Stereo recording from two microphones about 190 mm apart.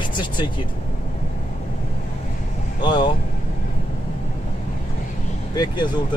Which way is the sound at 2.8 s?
25° left (ahead or behind).